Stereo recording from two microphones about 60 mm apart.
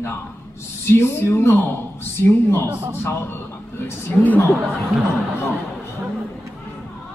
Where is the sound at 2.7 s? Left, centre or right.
Right.